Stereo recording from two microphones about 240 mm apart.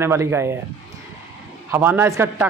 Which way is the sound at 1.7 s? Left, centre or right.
Centre.